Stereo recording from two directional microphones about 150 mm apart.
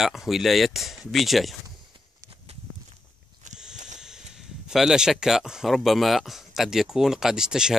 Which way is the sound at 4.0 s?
5° right (ahead or behind).